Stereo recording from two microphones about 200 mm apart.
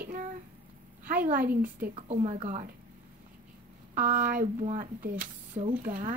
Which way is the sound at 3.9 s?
40° right (ahead or behind).